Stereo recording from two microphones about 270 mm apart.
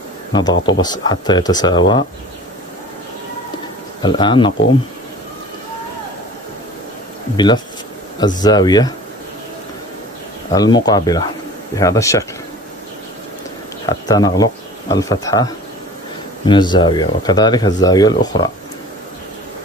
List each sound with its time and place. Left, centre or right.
0.3 s speech: centre
4.0 s speech: centre
7.3 s speech: centre
10.5 s speech: centre
13.8 s speech: centre